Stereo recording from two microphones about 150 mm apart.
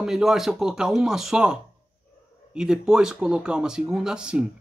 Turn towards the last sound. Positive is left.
turn(degrees=-5)  # may be behind; listen again after turning